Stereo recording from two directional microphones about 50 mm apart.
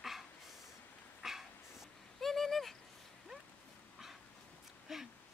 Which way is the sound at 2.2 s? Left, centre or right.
Centre.